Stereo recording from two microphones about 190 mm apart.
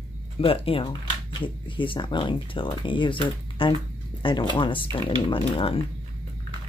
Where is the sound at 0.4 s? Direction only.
30° left (ahead or behind).